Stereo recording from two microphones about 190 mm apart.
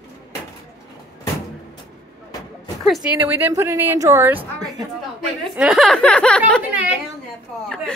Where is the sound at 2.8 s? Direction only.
Centre (ahead or behind).